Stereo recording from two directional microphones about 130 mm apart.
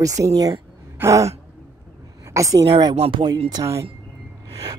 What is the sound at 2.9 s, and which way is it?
Speech, 40° right (ahead or behind).